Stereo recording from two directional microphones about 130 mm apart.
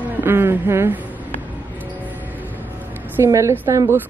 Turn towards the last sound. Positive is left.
turn(degrees=-20)  # may be behind; listen again after turning